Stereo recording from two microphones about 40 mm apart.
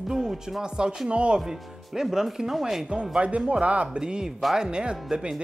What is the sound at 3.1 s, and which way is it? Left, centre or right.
Speech, right.